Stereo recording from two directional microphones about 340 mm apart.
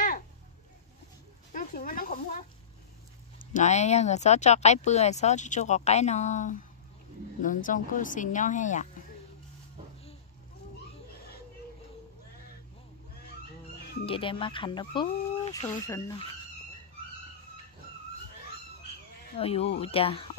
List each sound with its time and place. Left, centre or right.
1.5 s a sound: left
3.3 s speech: left
14.0 s speech: centre
19.3 s speech: centre